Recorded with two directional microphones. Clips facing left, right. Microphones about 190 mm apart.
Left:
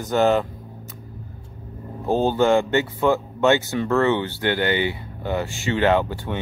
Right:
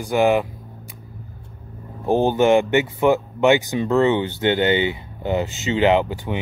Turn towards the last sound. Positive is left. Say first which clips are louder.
# right 2 dB
turn(degrees=-15)  # may be behind; listen again after turning